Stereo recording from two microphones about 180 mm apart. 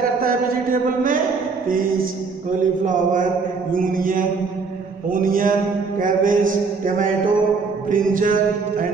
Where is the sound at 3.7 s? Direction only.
50° right (ahead or behind).